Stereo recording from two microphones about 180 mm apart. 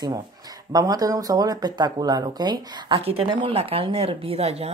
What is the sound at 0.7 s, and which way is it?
Speech, 20° right (ahead or behind).